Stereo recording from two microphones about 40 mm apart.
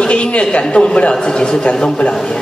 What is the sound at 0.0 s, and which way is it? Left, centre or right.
A man's voice, left.